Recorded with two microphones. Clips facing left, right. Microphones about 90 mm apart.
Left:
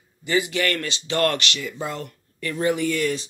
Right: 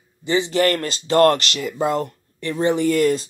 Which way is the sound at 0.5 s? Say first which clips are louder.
Right 6 dB; 40° right (ahead or behind).